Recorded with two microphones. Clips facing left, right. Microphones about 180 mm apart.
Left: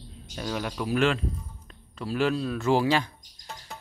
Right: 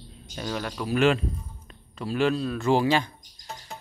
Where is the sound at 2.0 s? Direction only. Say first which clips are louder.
Right 2 dB; 5° left (ahead or behind).